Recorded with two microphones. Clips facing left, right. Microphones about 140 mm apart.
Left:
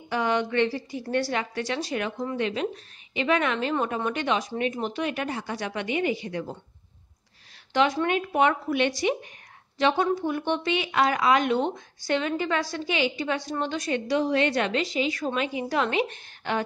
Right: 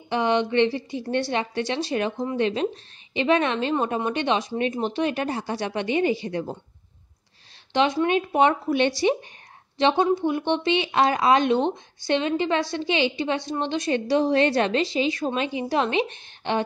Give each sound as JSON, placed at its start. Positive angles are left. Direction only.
{"t": 0.1, "sound": "speech", "side_deg": -25}
{"t": 7.7, "sound": "a woman's voice", "side_deg": -20}